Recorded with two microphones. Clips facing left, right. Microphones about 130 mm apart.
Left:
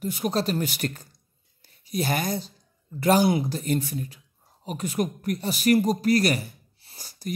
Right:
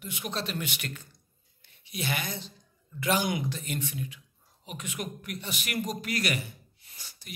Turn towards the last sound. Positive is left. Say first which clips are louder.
# left 13 dB
turn(degrees=40)  # may be behind; listen again after turning